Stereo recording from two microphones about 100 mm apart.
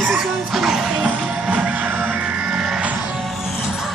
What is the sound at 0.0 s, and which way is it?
Music, centre (ahead or behind).